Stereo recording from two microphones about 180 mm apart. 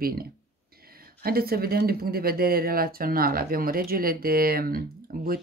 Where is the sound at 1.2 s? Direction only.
55° right (ahead or behind).